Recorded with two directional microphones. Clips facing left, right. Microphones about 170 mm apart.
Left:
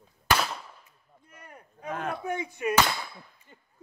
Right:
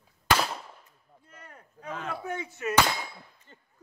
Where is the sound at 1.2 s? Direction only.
15° left (ahead or behind).